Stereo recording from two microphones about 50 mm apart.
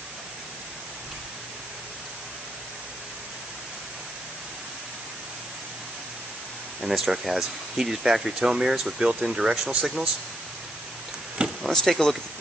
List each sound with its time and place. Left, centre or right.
6.8 s speech: centre
11.4 s a sound: right
11.7 s speech: centre